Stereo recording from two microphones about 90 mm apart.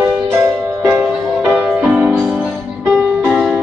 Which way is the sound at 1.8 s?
15° right (ahead or behind).